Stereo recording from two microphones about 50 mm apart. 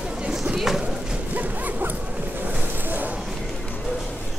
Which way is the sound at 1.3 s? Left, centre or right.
Right.